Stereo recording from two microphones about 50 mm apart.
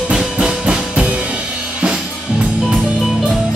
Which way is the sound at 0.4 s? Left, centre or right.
Centre.